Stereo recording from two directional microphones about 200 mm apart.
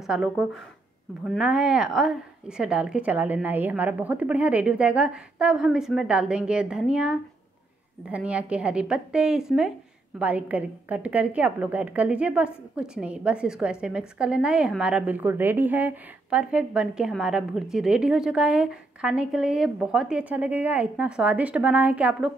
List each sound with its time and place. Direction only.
0.0 s a woman's voice: 5° right (ahead or behind)